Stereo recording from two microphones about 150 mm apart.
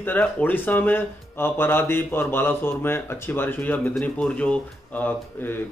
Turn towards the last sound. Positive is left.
turn(degrees=15)  # may be behind; listen again after turning